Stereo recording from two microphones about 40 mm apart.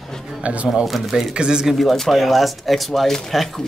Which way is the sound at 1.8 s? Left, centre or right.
Centre.